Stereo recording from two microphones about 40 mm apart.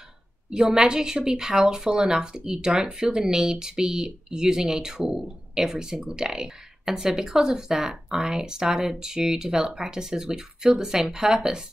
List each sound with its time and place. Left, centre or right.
0.5 s speech: centre